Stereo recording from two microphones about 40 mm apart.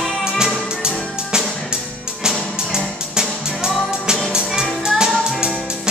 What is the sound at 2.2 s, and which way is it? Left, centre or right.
Music, centre.